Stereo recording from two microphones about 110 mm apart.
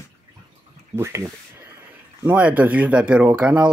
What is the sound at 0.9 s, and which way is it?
Speech, 25° right (ahead or behind).